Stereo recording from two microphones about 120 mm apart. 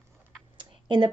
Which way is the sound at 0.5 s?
40° right (ahead or behind).